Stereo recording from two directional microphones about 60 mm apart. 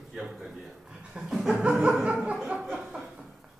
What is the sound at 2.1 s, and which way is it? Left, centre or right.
Chuckle, right.